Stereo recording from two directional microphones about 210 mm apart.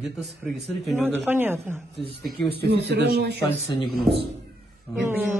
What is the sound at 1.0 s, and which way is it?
Speech, 10° right (ahead or behind).